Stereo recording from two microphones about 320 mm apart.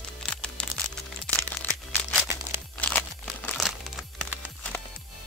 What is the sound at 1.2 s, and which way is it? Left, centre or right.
Crumpling, centre.